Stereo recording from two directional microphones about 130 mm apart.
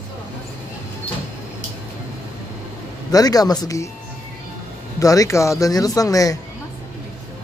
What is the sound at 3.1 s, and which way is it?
Speech, 30° left (ahead or behind).